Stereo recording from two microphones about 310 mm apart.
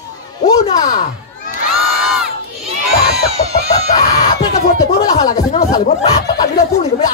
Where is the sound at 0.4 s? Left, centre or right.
Centre.